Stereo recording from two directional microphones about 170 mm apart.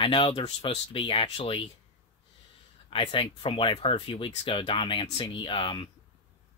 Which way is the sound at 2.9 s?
30° left (ahead or behind).